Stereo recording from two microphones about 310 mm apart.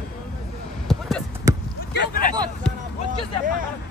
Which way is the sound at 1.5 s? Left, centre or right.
Centre.